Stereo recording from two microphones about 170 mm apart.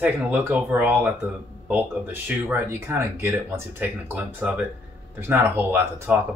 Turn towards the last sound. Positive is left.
turn(degrees=-15)  # may be behind; listen again after turning